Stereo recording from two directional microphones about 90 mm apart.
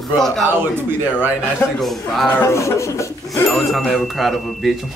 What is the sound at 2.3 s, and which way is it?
Speech, 35° left (ahead or behind).